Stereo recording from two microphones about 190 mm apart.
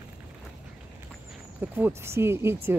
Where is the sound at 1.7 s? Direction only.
10° right (ahead or behind).